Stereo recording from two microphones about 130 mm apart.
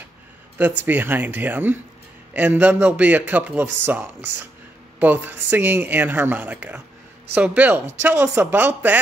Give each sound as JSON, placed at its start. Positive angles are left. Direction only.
{"t": 0.6, "sound": "a man's voice", "side_deg": -15}